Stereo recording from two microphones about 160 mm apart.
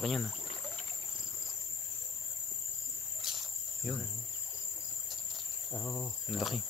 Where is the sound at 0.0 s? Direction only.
Centre (ahead or behind).